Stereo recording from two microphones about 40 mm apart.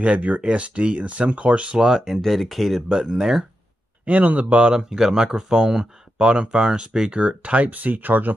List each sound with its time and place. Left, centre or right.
0.0 s speech: right
1.9 s speech: centre
2.2 s speech: centre
2.9 s speech: centre
4.0 s speech: right
4.7 s speech: centre
6.2 s speech: right
7.2 s speech: right